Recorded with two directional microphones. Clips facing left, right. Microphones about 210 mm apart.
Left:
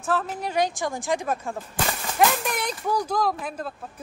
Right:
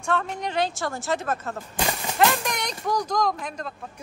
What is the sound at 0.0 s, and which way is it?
Speech, 5° left (ahead or behind).